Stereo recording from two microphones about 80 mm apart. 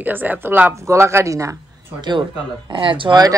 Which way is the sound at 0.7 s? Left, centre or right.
Right.